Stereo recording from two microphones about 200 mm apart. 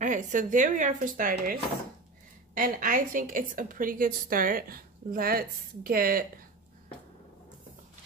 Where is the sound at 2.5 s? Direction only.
45° right (ahead or behind).